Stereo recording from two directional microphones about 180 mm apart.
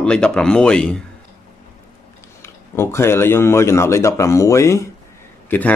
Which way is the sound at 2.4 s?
15° left (ahead or behind).